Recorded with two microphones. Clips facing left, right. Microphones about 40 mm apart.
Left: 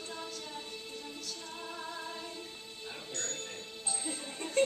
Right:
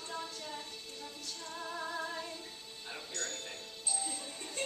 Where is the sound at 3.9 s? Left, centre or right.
Left.